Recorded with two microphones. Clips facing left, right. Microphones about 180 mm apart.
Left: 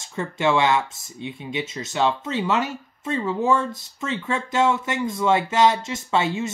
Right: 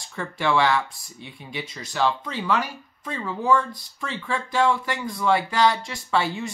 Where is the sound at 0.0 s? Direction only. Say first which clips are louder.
Left 4 dB; 20° left (ahead or behind).